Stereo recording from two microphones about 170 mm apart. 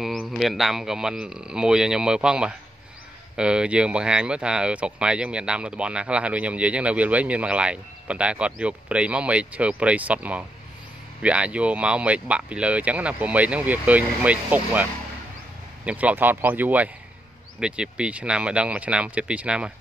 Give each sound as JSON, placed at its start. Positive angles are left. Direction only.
{"t": 0.0, "sound": "speech", "side_deg": 0}